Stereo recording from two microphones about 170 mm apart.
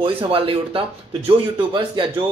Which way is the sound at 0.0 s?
30° right (ahead or behind).